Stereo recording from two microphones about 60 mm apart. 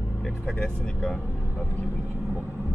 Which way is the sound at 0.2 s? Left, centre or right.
Centre.